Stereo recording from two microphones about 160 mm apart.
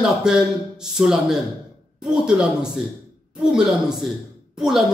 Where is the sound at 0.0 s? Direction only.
5° right (ahead or behind).